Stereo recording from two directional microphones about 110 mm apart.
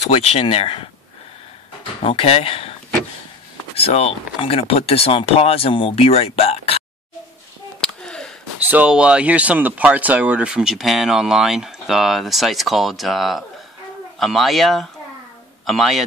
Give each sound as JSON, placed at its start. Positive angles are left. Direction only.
{"t": 0.1, "sound": "speech", "side_deg": 65}
{"t": 2.0, "sound": "speech", "side_deg": 65}
{"t": 3.7, "sound": "speech", "side_deg": 65}
{"t": 8.0, "sound": "a sound", "side_deg": 5}
{"t": 8.6, "sound": "a man's voice", "side_deg": -10}